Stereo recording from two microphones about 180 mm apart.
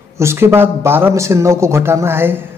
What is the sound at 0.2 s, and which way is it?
Speech, 15° right (ahead or behind).